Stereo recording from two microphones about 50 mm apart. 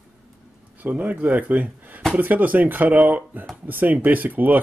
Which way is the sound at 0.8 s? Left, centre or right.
Right.